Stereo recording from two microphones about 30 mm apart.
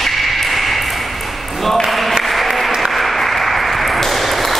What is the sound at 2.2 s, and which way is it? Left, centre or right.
Applause, centre.